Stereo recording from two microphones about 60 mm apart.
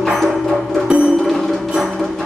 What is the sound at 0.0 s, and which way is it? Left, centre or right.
Music, centre.